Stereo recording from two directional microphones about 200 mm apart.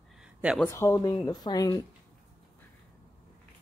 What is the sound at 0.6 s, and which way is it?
Speech, 15° left (ahead or behind).